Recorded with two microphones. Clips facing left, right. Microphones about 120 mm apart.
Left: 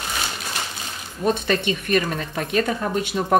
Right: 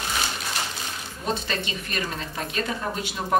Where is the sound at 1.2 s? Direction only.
60° left (ahead or behind).